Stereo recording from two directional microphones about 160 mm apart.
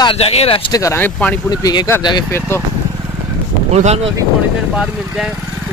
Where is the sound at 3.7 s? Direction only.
40° right (ahead or behind).